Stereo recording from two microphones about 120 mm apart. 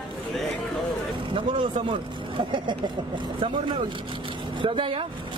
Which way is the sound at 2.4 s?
40° right (ahead or behind).